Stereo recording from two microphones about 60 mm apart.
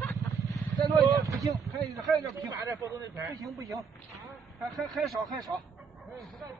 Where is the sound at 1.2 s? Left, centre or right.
Right.